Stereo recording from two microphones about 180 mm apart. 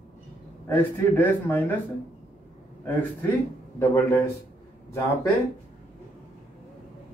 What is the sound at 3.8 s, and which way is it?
Speech, 15° left (ahead or behind).